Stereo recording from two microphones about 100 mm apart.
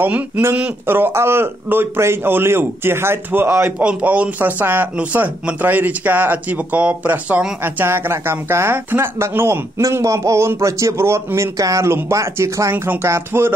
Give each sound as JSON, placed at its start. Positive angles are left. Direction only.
{"t": 0.0, "sound": "speech", "side_deg": -20}